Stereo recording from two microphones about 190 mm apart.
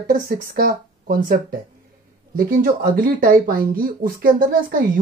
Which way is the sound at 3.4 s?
50° right (ahead or behind).